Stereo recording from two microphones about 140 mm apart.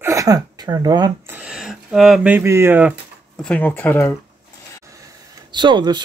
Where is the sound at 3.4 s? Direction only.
10° left (ahead or behind).